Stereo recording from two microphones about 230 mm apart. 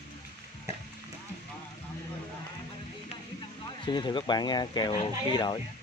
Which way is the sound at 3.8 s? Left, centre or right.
Centre.